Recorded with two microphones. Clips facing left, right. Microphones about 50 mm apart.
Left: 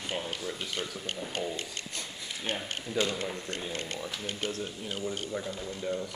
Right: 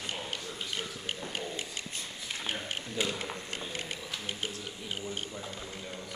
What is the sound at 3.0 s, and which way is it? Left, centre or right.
Speech, centre.